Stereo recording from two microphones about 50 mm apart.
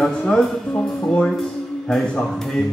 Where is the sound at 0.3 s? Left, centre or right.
Centre.